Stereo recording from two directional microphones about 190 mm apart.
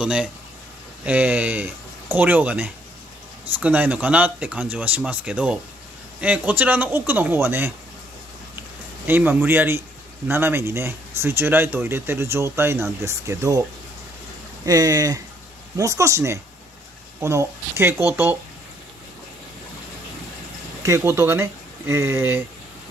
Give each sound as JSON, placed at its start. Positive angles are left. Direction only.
{"t": 0.0, "sound": "speech", "side_deg": -5}
{"t": 9.0, "sound": "speech", "side_deg": -10}
{"t": 14.7, "sound": "speech", "side_deg": -20}
{"t": 20.8, "sound": "speech", "side_deg": -15}